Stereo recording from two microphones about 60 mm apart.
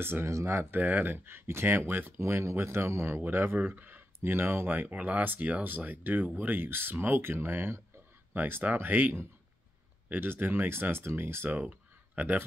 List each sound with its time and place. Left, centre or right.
0.0 s speech: right
0.3 s speech: right
0.7 s speech: right
2.2 s speech: right